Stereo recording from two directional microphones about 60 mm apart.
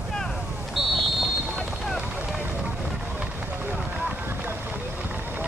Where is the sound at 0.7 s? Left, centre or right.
Centre.